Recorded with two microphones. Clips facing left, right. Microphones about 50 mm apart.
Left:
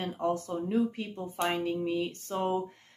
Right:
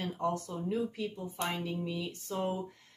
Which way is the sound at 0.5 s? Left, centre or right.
Left.